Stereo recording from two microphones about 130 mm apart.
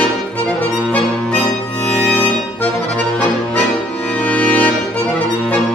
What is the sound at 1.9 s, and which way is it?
Music, 10° left (ahead or behind).